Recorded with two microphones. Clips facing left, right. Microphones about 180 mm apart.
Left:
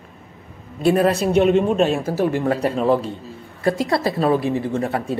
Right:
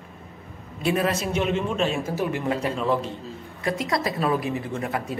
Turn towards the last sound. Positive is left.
turn(degrees=30)  # may be behind; listen again after turning